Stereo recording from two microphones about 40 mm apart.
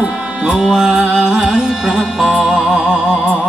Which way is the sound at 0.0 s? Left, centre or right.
Right.